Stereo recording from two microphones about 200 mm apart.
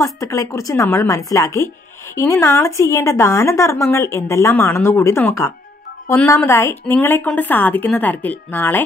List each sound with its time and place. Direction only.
0.0 s speech: 15° left (ahead or behind)